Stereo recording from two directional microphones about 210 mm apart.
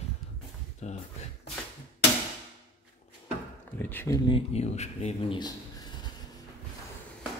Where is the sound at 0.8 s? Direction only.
30° left (ahead or behind).